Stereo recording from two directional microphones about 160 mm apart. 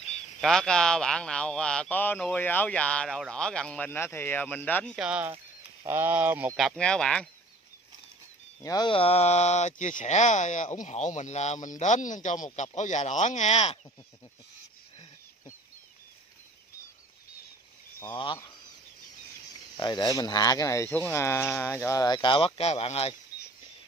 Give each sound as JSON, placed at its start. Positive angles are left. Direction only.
{"t": 0.0, "sound": "speech", "side_deg": 5}
{"t": 4.9, "sound": "speech", "side_deg": -5}
{"t": 6.8, "sound": "speech", "side_deg": 5}
{"t": 8.6, "sound": "speech", "side_deg": 30}
{"t": 18.0, "sound": "speech", "side_deg": 30}
{"t": 19.8, "sound": "speech", "side_deg": 25}